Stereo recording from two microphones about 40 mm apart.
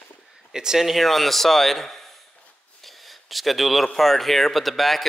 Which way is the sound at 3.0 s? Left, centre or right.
Centre.